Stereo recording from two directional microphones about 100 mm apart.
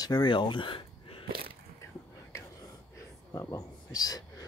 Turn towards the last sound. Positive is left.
turn(degrees=40)  # may be behind; listen again after turning